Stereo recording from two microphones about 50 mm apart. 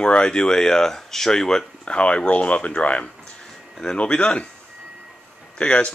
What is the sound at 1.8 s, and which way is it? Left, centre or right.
Speech, left.